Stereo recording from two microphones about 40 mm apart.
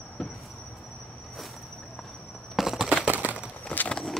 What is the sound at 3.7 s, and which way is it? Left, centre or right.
Vehicle, left.